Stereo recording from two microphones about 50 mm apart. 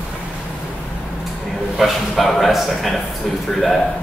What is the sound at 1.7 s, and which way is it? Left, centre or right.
A man's voice, centre.